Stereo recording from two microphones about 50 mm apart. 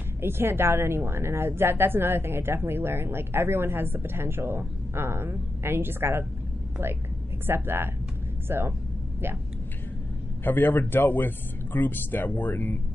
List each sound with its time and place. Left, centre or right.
0.2 s a woman's voice: right
7.4 s a woman's voice: right
10.4 s speech: left